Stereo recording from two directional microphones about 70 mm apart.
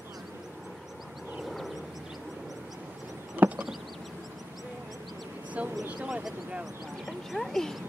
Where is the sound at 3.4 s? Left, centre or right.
Right.